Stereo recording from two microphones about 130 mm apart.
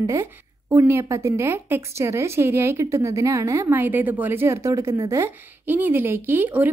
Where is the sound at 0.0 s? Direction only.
20° right (ahead or behind).